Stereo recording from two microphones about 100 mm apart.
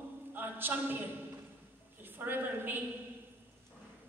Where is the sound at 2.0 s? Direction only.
20° right (ahead or behind).